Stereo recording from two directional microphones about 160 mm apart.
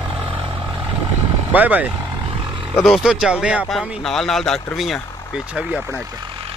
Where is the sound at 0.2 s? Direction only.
35° right (ahead or behind).